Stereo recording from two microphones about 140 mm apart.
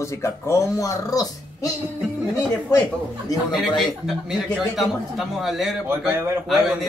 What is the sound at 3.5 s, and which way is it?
A man's voice, centre (ahead or behind).